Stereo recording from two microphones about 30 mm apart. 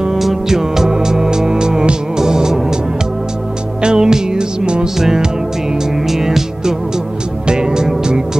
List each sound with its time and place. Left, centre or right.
0.1 s music: centre
3.8 s music: right
4.9 s music: centre
7.4 s music: right